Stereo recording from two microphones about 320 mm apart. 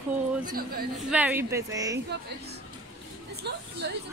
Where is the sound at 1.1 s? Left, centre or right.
Centre.